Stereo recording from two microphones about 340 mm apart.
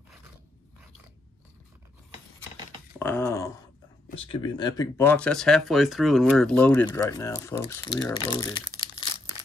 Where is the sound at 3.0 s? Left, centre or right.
Centre.